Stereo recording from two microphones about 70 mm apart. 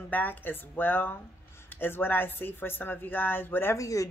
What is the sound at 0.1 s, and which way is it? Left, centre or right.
Speech, left.